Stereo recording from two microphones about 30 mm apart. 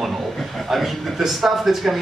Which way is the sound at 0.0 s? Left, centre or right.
Centre.